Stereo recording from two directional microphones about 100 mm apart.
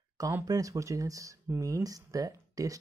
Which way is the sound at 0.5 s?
35° right (ahead or behind).